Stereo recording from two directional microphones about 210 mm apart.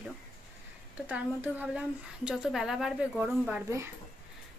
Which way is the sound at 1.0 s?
5° right (ahead or behind).